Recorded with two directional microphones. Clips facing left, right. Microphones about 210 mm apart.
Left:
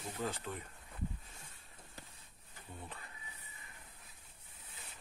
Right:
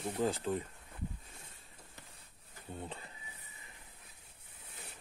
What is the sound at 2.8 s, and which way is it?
Speech, 25° right (ahead or behind).